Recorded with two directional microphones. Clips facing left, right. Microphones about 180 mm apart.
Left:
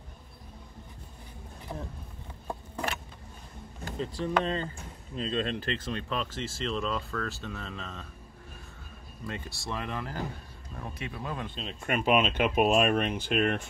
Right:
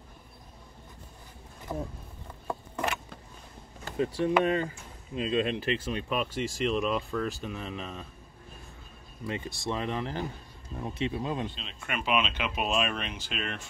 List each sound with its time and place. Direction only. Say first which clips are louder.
3.9 s speech: right 4 dB; 15° right (ahead or behind)
9.2 s speech: right 4 dB; 20° right (ahead or behind)
11.5 s speech: left 5 dB; 40° left (ahead or behind)